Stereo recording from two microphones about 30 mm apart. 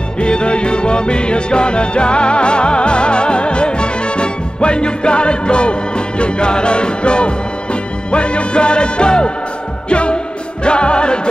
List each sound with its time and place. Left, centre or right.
0.2 s music: left